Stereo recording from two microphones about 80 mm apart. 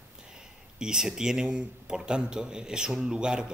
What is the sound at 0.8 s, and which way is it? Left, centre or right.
A man's voice, centre.